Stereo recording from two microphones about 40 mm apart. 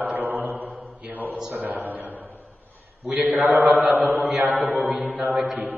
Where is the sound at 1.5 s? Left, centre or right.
Right.